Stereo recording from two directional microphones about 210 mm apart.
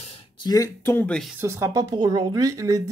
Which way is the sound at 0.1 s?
20° left (ahead or behind).